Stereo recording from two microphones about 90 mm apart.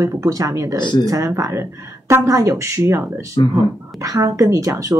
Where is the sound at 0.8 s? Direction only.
60° left (ahead or behind).